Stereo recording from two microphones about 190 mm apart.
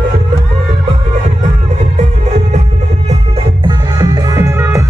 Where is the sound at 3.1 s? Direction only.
25° right (ahead or behind).